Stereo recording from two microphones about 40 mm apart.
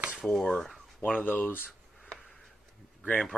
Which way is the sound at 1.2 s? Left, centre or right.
Left.